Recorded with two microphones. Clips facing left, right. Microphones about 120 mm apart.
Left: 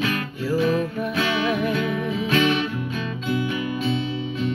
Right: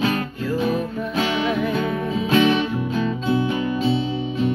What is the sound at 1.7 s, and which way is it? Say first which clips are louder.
Music: right 1 dB; 30° right (ahead or behind).